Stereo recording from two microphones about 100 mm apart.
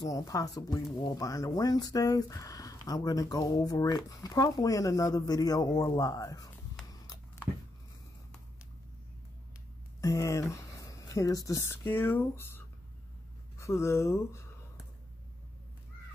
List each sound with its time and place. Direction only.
0.0 s speech: 35° left (ahead or behind)
6.8 s a sound: 5° left (ahead or behind)
10.0 s speech: 35° left (ahead or behind)